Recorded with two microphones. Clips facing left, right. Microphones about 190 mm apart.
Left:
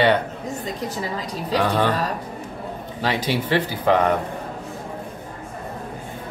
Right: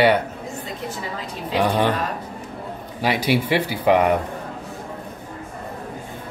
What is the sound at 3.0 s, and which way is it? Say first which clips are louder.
Speech: right 3 dB; 10° right (ahead or behind).